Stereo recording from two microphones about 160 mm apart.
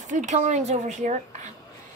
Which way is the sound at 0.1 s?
45° right (ahead or behind).